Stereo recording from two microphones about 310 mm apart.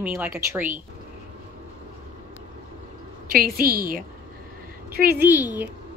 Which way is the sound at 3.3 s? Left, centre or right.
Right.